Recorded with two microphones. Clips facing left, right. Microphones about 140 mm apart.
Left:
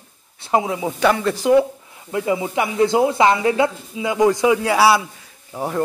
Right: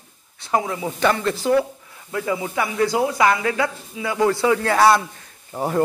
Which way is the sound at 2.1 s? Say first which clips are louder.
Left 3 dB; 20° left (ahead or behind).